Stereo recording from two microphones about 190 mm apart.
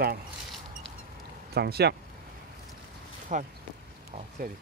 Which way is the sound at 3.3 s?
45° right (ahead or behind).